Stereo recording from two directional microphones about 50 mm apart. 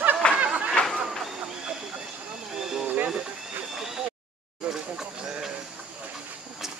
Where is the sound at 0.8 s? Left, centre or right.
Left.